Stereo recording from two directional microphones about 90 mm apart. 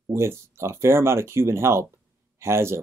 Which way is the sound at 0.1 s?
30° right (ahead or behind).